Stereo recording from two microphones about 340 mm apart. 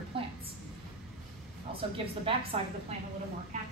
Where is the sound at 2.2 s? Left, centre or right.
Centre.